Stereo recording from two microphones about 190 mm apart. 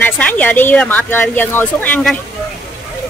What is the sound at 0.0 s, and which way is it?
Speech, 10° left (ahead or behind).